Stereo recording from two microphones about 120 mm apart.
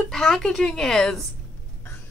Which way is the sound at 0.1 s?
5° left (ahead or behind).